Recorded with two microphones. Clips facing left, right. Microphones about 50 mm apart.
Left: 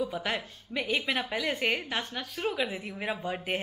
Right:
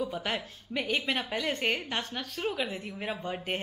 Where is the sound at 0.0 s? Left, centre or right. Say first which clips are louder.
Left 1 dB; centre.